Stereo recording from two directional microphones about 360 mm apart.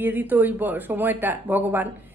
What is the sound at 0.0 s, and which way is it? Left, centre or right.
Speech, centre.